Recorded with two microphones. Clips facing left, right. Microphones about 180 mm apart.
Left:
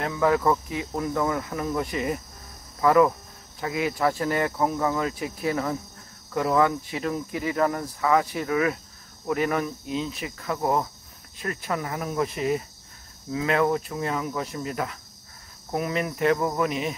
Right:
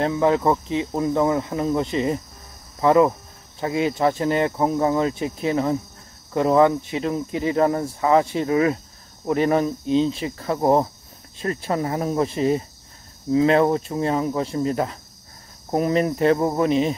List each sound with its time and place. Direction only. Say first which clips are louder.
0.0 s speech: right 4 dB; 25° right (ahead or behind)